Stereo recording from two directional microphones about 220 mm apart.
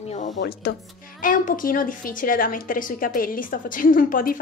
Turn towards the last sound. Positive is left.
turn(degrees=40)  # may be behind; listen again after turning